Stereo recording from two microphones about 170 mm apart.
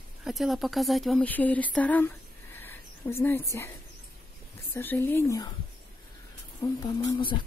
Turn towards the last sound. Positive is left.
turn(degrees=25)  # may be behind; listen again after turning